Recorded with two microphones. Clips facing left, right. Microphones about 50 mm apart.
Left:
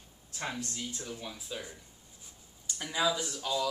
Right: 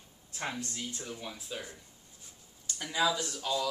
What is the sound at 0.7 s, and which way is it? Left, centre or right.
Speech, centre.